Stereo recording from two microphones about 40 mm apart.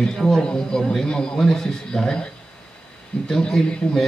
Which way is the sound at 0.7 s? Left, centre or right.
Centre.